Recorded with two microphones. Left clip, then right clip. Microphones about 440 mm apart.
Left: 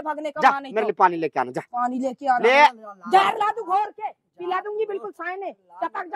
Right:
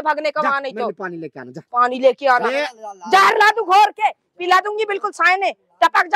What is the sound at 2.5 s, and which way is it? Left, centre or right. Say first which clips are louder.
Speech: left 6 dB; left.